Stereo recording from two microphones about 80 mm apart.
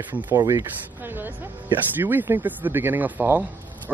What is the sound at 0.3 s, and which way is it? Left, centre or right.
Speech, right.